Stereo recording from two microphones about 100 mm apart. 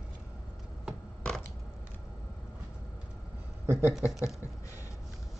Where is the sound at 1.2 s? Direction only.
10° left (ahead or behind).